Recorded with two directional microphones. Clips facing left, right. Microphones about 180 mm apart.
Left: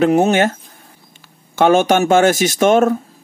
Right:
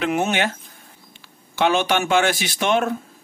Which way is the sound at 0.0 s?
40° left (ahead or behind).